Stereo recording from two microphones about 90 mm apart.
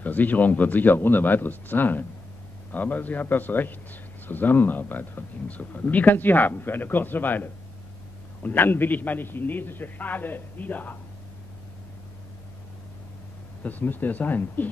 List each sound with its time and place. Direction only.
0.0 s a man's voice: 20° left (ahead or behind)
13.6 s a man's voice: 20° left (ahead or behind)